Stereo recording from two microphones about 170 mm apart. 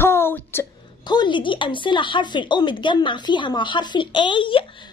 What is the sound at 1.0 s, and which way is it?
Speech, 25° left (ahead or behind).